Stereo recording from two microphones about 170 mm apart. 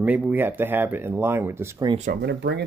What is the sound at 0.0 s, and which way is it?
Speech, 10° right (ahead or behind).